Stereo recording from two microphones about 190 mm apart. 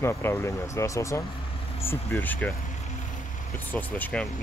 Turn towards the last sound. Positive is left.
turn(degrees=5)  # may be behind; listen again after turning